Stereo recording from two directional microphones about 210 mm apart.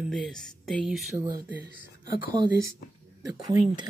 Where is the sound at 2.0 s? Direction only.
20° right (ahead or behind).